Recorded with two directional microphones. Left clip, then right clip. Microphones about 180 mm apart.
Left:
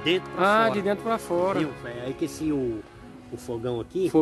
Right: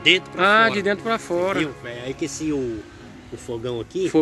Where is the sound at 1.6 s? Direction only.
50° left (ahead or behind).